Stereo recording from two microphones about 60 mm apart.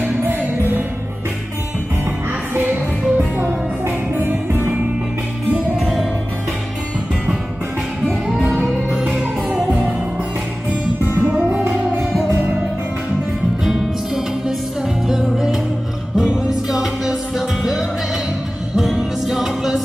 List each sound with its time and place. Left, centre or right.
0.0 s music: right
2.5 s music: right
5.8 s music: centre
8.5 s music: centre
9.7 s music: right
11.2 s music: right
13.7 s music: centre
18.8 s music: centre